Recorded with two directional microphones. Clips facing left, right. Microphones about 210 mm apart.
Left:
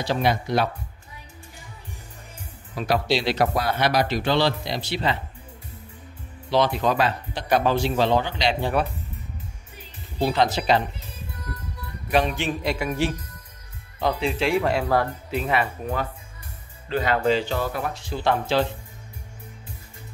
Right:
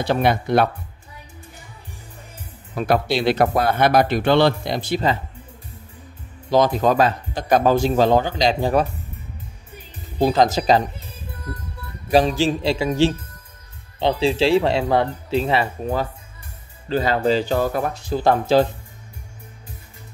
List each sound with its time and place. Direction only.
0.0 s speech: 60° right (ahead or behind)
2.7 s speech: 50° right (ahead or behind)
6.5 s speech: 45° right (ahead or behind)
10.1 s speech: 40° right (ahead or behind)
12.1 s speech: 35° right (ahead or behind)